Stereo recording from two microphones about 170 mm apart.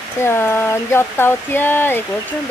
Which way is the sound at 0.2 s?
15° left (ahead or behind).